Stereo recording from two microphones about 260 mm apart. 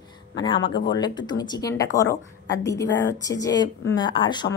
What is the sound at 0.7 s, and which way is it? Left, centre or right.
A woman's voice, centre.